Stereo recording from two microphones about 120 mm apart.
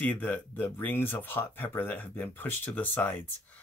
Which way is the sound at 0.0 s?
15° left (ahead or behind).